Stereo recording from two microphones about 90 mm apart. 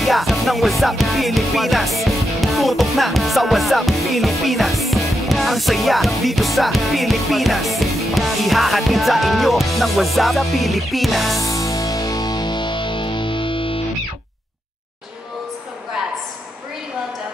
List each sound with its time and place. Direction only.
0.0 s music: centre (ahead or behind)
11.3 s music: 35° left (ahead or behind); by 13.8 s 80° left